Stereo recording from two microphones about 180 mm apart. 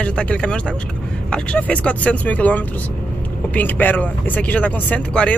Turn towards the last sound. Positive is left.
turn(degrees=5)  # may be behind; listen again after turning